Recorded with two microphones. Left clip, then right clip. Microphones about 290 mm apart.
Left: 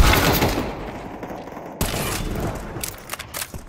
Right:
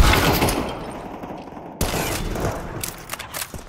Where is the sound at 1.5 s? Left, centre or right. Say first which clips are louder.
Left 2 dB; centre.